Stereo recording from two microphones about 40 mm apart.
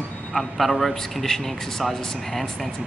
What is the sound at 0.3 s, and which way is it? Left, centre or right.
A man's voice, centre.